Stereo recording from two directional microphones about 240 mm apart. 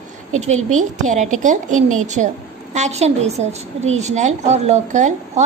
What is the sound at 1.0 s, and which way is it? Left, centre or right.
Speech, right.